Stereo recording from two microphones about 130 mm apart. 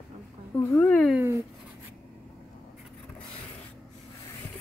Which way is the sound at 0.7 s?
10° left (ahead or behind).